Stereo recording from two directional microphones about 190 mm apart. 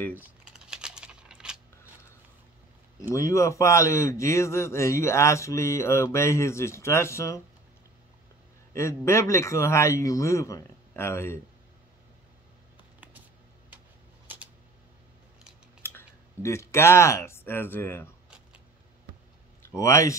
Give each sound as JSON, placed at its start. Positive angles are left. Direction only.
{"t": 0.2, "sound": "a sound", "side_deg": -5}
{"t": 3.0, "sound": "a man's voice", "side_deg": 15}
{"t": 8.7, "sound": "a man's voice", "side_deg": 15}
{"t": 15.8, "sound": "speech", "side_deg": 10}
{"t": 19.7, "sound": "a man's voice", "side_deg": 15}